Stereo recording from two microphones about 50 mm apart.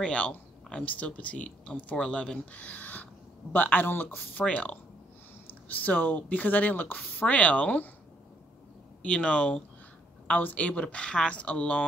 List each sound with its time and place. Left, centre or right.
0.0 s speech: left
9.0 s speech: left